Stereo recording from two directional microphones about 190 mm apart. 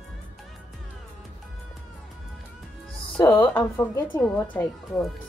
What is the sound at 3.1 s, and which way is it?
A woman's voice, 20° left (ahead or behind).